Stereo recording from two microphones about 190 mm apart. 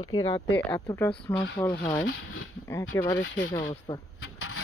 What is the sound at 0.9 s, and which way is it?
Speech, 10° left (ahead or behind).